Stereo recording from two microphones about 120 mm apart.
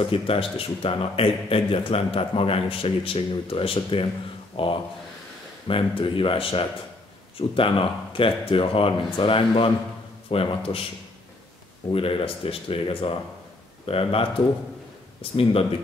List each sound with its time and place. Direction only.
0.0 s a man's voice: 50° left (ahead or behind)
11.9 s a man's voice: 50° left (ahead or behind)
15.3 s a man's voice: 50° left (ahead or behind)